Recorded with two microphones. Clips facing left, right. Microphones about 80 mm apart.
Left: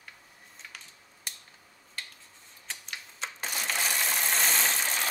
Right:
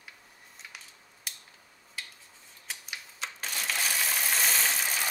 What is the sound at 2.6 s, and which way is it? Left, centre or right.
Typewriter, centre.